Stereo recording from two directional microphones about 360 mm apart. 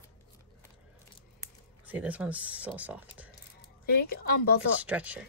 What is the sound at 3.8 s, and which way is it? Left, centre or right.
Speech, left.